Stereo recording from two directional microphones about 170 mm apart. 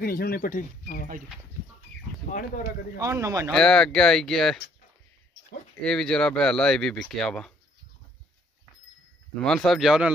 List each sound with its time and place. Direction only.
0.0 s speech: 60° left (ahead or behind)
2.3 s speech: 55° left (ahead or behind)
3.0 s speech: 20° right (ahead or behind)
3.5 s speech: 5° left (ahead or behind)
5.9 s speech: 5° left (ahead or behind)
9.4 s speech: centre (ahead or behind)